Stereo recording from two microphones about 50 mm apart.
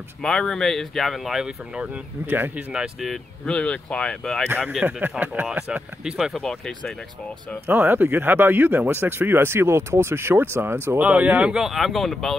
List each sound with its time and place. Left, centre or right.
0.2 s speech: centre
2.2 s speech: right
3.4 s speech: left
4.8 s speech: centre
5.2 s speech: right
6.1 s speech: centre
7.6 s speech: right
11.0 s speech: right
11.5 s speech: centre